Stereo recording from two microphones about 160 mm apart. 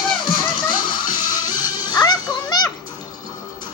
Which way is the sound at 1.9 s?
25° left (ahead or behind).